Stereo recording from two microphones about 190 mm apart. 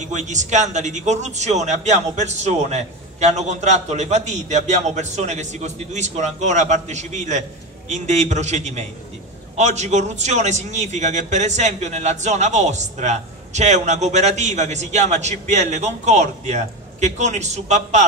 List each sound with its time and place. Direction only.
0.0 s a man's voice: 40° right (ahead or behind)